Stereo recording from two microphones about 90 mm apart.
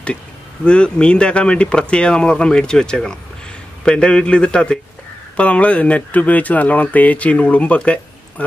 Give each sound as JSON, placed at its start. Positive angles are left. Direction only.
{"t": 0.7, "sound": "speech", "side_deg": 10}